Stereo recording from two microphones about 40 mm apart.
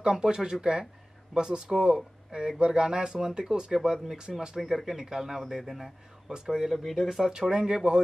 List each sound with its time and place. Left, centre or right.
0.0 s speech: centre
4.6 s speech: centre
6.7 s speech: centre
7.1 s speech: centre
7.3 s speech: centre